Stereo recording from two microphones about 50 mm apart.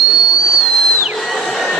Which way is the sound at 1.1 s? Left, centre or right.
Centre.